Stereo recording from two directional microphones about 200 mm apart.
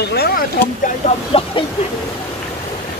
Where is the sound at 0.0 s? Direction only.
55° left (ahead or behind).